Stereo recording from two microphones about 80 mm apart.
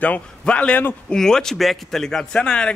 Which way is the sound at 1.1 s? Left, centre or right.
Centre.